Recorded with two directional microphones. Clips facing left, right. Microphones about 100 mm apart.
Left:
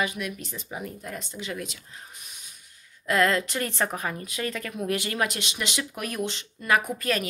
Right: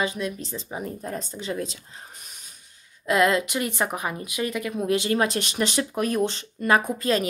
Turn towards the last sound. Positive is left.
turn(degrees=-25)  # may be behind; listen again after turning